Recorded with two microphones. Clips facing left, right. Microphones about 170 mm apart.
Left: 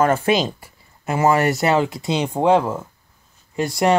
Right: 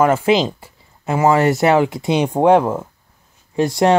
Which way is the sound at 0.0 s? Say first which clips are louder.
Right 3 dB; 15° right (ahead or behind).